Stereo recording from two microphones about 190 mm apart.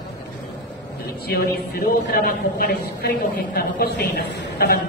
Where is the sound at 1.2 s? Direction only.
55° left (ahead or behind).